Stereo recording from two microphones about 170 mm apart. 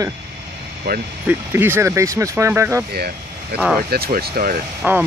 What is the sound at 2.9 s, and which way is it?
Speech, 65° right (ahead or behind).